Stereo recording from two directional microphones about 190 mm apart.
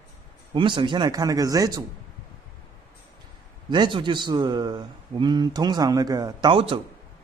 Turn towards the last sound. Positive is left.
turn(degrees=-30)  # may be behind; listen again after turning